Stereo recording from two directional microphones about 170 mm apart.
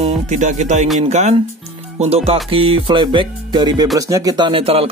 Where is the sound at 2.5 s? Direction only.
30° right (ahead or behind).